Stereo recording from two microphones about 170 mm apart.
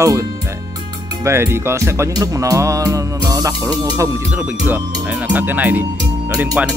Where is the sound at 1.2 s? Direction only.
15° right (ahead or behind).